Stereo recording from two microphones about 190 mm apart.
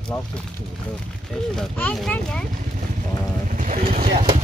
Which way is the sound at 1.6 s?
5° left (ahead or behind).